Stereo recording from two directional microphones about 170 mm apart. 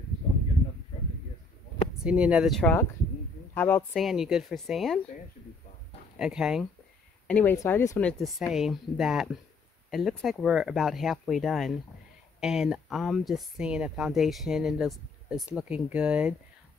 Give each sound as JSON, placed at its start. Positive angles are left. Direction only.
{"t": 2.0, "sound": "speech", "side_deg": -5}
{"t": 2.6, "sound": "speech", "side_deg": 10}
{"t": 3.9, "sound": "speech", "side_deg": 0}
{"t": 6.1, "sound": "speech", "side_deg": -5}
{"t": 7.2, "sound": "speech", "side_deg": 10}
{"t": 8.0, "sound": "speech", "side_deg": 5}